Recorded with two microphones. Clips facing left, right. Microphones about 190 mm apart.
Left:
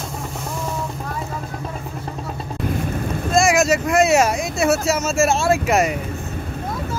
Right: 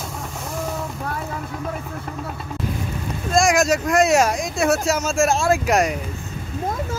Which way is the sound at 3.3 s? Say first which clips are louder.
Left 1 dB; centre (ahead or behind).